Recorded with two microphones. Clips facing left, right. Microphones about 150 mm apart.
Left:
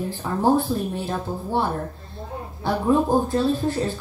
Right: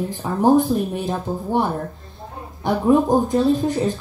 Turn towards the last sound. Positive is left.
turn(degrees=-15)  # may be behind; listen again after turning